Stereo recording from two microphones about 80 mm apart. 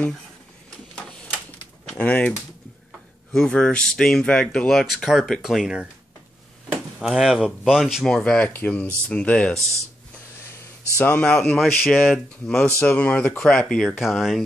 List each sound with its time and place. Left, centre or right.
2.0 s speech: centre
3.3 s speech: centre
7.0 s speech: centre
11.0 s speech: centre
12.8 s speech: centre